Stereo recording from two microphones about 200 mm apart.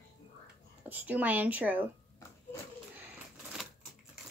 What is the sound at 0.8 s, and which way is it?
Speech, 10° right (ahead or behind).